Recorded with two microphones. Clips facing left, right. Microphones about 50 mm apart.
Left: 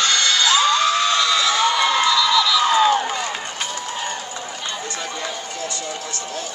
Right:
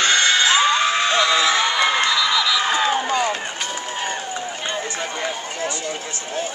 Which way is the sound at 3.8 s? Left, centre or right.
Right.